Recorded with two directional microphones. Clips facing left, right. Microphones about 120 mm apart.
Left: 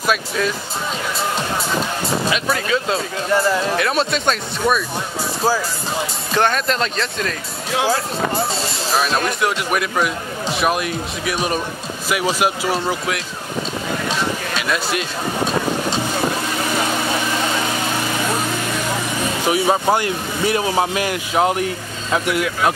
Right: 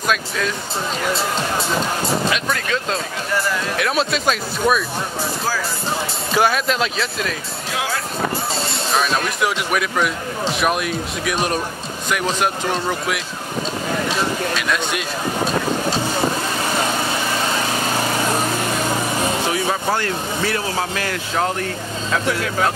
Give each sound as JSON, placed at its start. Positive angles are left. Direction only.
{"t": 0.0, "sound": "speech", "side_deg": 5}
{"t": 2.3, "sound": "speech", "side_deg": 5}
{"t": 6.3, "sound": "speech", "side_deg": -5}
{"t": 8.9, "sound": "speech", "side_deg": 0}
{"t": 14.6, "sound": "speech", "side_deg": 0}
{"t": 19.5, "sound": "speech", "side_deg": 15}